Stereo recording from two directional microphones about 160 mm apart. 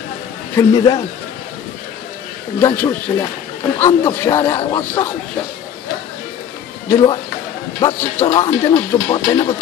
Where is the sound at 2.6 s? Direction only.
15° left (ahead or behind).